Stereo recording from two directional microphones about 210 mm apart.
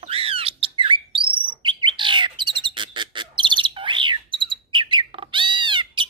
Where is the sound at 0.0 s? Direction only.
25° right (ahead or behind).